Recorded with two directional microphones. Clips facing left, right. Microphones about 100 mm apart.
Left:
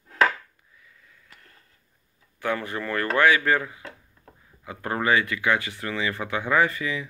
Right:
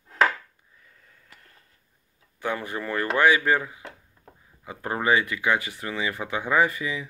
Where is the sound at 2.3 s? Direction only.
20° right (ahead or behind).